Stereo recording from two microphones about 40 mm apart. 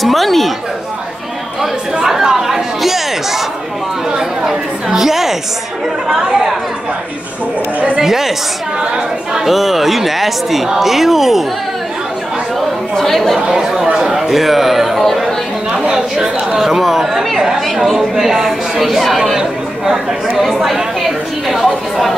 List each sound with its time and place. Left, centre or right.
0.0 s speech: centre
2.0 s chatter: centre
4.1 s chatter: centre
4.8 s a woman's voice: centre
8.0 s a woman's voice: centre
9.5 s speech: centre
12.9 s speech: centre
13.4 s speech: centre
15.9 s a woman's voice: centre